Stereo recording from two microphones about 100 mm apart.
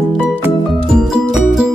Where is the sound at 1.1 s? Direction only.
5° right (ahead or behind).